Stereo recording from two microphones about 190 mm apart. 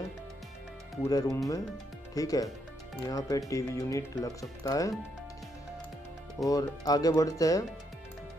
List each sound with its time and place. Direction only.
1.0 s speech: 15° left (ahead or behind)
6.4 s speech: 20° left (ahead or behind)